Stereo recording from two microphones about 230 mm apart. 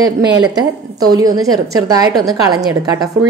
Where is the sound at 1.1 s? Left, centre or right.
Centre.